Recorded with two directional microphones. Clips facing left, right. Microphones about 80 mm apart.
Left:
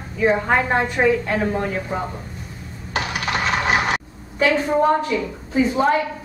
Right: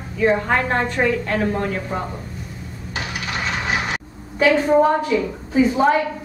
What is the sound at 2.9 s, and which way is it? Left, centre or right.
Coin, left.